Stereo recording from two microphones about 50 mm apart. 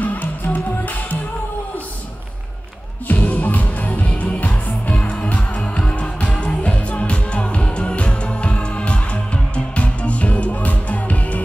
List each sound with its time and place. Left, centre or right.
0.0 s music: left
3.1 s music: left